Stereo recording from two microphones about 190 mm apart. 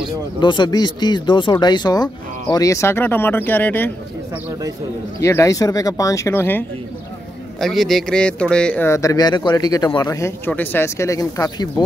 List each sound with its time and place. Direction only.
0.4 s speech: 25° left (ahead or behind)
5.2 s speech: 15° left (ahead or behind)
7.6 s speech: centre (ahead or behind); by 11.8 s 20° left (ahead or behind)